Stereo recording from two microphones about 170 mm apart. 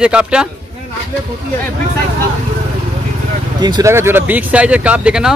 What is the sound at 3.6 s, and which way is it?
Speech, 25° right (ahead or behind).